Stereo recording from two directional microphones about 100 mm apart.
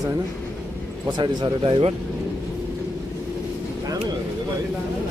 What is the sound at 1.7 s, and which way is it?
Speech, 65° right (ahead or behind).